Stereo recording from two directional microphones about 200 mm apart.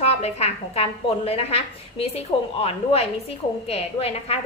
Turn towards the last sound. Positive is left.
turn(degrees=30)  # may be behind; listen again after turning